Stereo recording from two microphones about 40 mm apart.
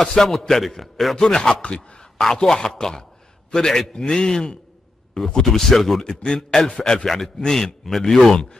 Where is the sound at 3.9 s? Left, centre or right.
Centre.